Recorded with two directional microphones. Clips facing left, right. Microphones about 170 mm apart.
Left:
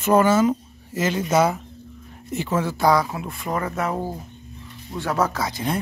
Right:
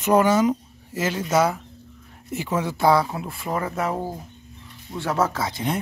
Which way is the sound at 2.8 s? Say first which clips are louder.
Right 1 dB; 30° right (ahead or behind).